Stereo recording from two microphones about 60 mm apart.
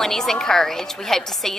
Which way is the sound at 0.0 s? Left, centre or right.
Centre.